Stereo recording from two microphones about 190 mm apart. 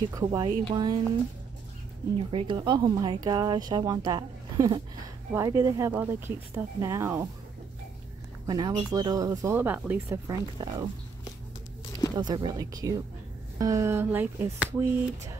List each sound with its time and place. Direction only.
0.1 s speech: 20° right (ahead or behind)
2.1 s speech: 25° right (ahead or behind)
8.5 s speech: 20° right (ahead or behind)
12.2 s speech: 25° right (ahead or behind)